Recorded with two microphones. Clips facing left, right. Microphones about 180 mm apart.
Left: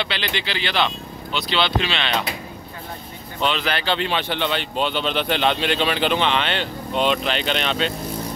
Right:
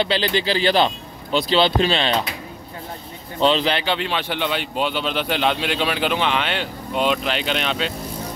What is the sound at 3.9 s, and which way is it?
A man's voice, 5° right (ahead or behind).